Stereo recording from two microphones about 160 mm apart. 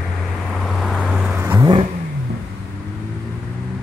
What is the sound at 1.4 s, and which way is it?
Vehicle, 20° right (ahead or behind).